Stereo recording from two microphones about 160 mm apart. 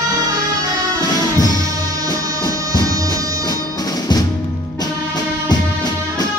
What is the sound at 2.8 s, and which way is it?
Music, 20° right (ahead or behind).